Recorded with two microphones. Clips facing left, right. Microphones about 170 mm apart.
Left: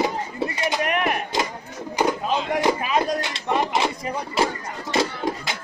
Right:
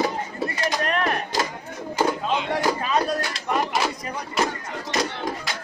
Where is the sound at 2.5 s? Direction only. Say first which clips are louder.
Left 3 dB; 15° left (ahead or behind).